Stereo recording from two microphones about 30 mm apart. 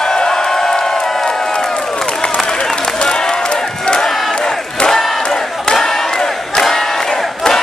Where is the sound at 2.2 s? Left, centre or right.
Left.